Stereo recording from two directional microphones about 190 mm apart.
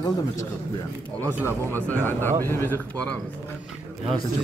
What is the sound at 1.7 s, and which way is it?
Speech, 10° left (ahead or behind).